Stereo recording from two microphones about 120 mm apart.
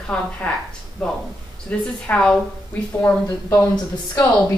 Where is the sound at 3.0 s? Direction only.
25° left (ahead or behind).